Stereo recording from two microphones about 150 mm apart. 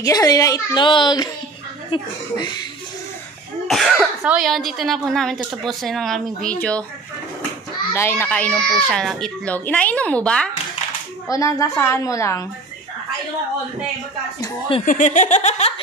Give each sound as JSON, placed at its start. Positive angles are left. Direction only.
{"t": 0.0, "sound": "a child's voice", "side_deg": 25}
{"t": 3.6, "sound": "speech", "side_deg": 0}
{"t": 7.9, "sound": "a child's voice", "side_deg": 15}
{"t": 11.2, "sound": "a child's voice", "side_deg": 20}
{"t": 14.9, "sound": "laughter", "side_deg": 55}